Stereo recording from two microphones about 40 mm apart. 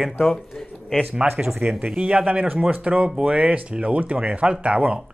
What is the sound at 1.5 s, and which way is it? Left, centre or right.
Speech, right.